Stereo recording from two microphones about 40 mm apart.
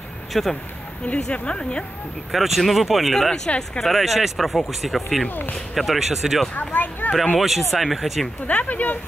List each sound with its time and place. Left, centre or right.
0.3 s speech: centre
1.3 s speech: left
2.3 s speech: centre
3.3 s speech: left
3.8 s speech: centre
6.7 s speech: left
7.3 s speech: centre
8.5 s speech: left